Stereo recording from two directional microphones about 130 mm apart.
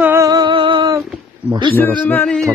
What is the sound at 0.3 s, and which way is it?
Music, 35° right (ahead or behind).